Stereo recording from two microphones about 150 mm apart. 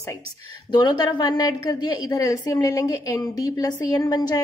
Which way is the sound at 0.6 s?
30° left (ahead or behind).